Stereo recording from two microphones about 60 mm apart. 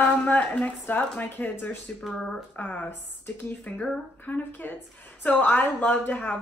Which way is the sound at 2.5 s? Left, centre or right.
Left.